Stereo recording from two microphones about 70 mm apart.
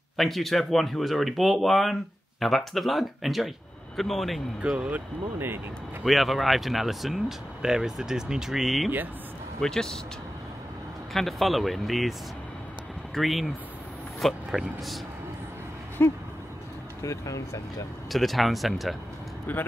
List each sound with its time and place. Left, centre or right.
0.2 s speech: centre
4.7 s speech: centre
6.0 s speech: centre
11.1 s speech: centre
16.0 s a sound: left
17.0 s speech: left
18.1 s speech: centre
19.5 s speech: left